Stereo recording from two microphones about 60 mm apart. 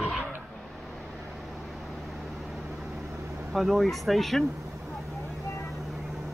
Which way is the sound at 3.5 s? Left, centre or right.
Centre.